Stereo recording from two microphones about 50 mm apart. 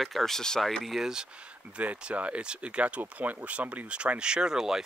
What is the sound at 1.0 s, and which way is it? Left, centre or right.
Speech, centre.